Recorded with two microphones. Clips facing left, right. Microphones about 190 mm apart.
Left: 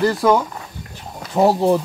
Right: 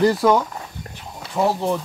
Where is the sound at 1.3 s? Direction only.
35° left (ahead or behind).